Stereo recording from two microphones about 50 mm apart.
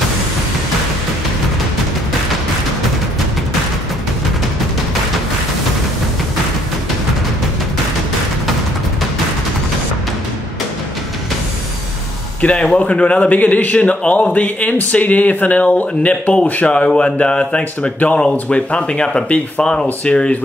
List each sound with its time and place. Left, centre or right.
12.4 s speech: left